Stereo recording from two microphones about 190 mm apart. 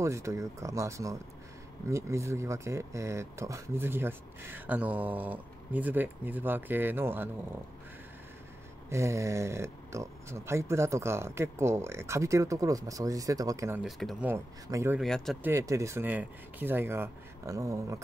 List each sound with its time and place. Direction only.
0.0 s speech: 15° right (ahead or behind)
8.9 s speech: 15° right (ahead or behind)
13.8 s speech: centre (ahead or behind)
14.3 s speech: 15° right (ahead or behind)
15.0 s speech: centre (ahead or behind)
15.4 s speech: 15° right (ahead or behind)